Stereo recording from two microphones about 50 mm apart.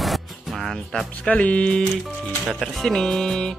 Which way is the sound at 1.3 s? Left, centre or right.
Left.